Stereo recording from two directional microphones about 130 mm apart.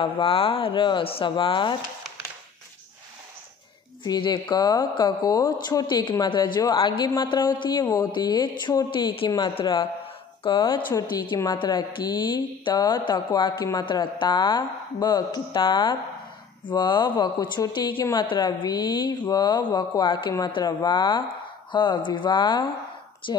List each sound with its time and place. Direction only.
0.0 s speech: 45° left (ahead or behind)
4.0 s a woman's voice: 35° left (ahead or behind)
10.9 s a woman's voice: 25° left (ahead or behind)